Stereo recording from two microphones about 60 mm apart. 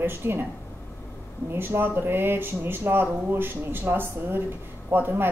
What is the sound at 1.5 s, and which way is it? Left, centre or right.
A woman's voice, right.